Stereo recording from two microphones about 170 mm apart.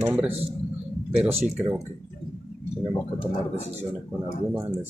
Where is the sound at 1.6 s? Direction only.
20° right (ahead or behind).